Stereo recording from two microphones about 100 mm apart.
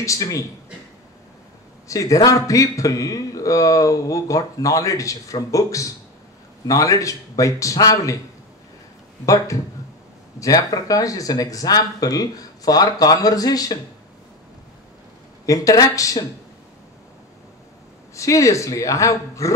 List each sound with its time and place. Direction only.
0.0 s speech: 35° left (ahead or behind)
1.9 s speech: 35° left (ahead or behind)
9.2 s speech: 35° left (ahead or behind)
15.4 s speech: 35° left (ahead or behind)
18.1 s speech: 30° left (ahead or behind)